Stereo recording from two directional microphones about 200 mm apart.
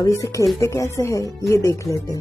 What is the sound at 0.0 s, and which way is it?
Speech, 15° left (ahead or behind).